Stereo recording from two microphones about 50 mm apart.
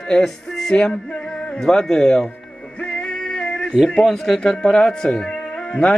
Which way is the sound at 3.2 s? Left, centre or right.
Centre.